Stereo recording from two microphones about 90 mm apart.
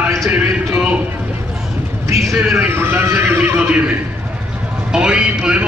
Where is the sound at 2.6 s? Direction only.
25° right (ahead or behind).